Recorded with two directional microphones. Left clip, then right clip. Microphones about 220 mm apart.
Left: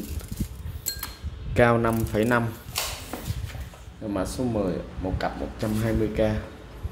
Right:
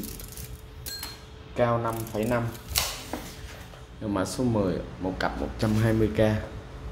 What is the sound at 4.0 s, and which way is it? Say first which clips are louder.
Speech: even; 10° right (ahead or behind).